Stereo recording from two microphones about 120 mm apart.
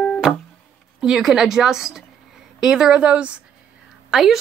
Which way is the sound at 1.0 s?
5° right (ahead or behind).